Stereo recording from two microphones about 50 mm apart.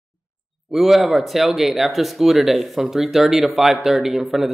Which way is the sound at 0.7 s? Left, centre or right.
Centre.